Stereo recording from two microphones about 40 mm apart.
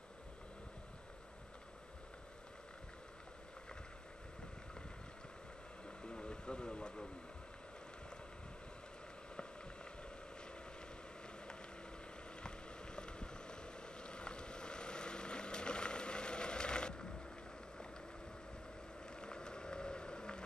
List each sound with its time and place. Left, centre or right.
5.9 s vehicle: left
12.4 s boat: left
19.0 s a sound: left